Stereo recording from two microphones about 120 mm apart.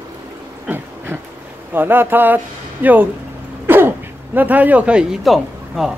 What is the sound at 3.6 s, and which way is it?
Throat clearing, 20° right (ahead or behind).